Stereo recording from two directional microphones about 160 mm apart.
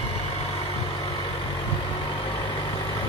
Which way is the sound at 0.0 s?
40° left (ahead or behind).